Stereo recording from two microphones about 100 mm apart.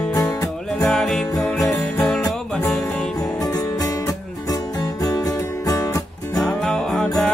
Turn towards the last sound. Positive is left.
turn(degrees=5)  # may be behind; listen again after turning